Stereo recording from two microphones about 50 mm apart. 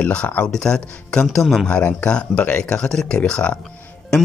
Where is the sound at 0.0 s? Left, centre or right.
Left.